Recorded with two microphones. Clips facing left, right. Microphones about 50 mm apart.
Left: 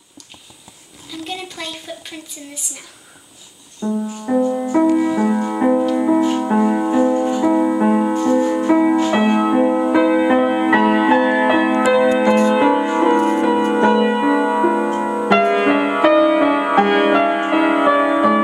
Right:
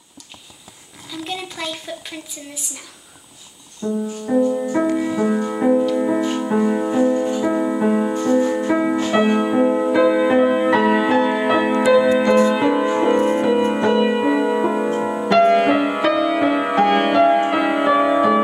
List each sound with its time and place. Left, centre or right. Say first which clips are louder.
1.2 s speech: right 1 dB; centre
4.1 s music: right 1 dB; left
13.9 s piano: left 2 dB; centre
15.2 s music: right 1 dB; centre